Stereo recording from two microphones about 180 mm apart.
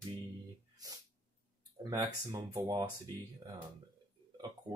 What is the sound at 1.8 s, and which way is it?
Speech, 20° right (ahead or behind).